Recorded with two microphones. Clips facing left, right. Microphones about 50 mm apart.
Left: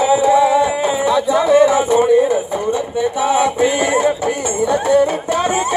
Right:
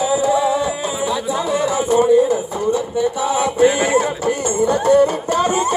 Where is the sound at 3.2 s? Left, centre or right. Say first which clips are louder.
Left 7 dB; left.